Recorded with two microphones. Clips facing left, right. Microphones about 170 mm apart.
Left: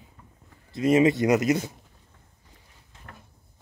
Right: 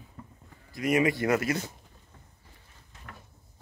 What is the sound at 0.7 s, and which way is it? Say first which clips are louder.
Speech: left 6 dB; 25° left (ahead or behind).